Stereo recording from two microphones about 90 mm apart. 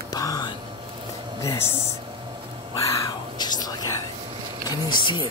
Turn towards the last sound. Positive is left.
turn(degrees=65)  # may be behind; listen again after turning